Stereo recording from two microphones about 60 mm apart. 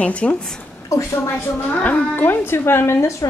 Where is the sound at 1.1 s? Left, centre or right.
Left.